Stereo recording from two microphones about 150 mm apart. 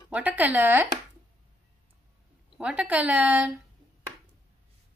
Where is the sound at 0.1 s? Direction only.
10° right (ahead or behind).